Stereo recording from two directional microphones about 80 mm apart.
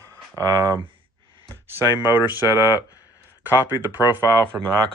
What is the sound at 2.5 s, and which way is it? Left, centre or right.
Speech, left.